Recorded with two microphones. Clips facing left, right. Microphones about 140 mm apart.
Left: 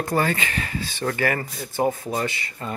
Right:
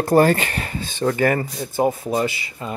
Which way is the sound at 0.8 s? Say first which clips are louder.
Right 6 dB; 20° right (ahead or behind).